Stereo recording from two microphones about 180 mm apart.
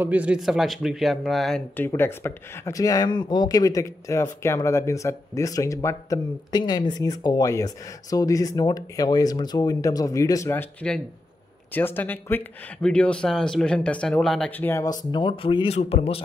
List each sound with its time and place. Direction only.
0.0 s speech: 10° right (ahead or behind)
1.8 s speech: 15° left (ahead or behind); by 16.2 s 35° left (ahead or behind)